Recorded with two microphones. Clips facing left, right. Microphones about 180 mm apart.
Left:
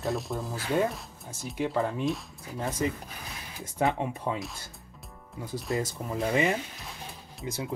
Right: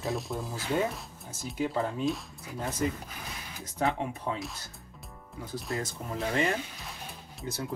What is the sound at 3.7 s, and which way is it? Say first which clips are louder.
Speech: left 2 dB; 20° left (ahead or behind).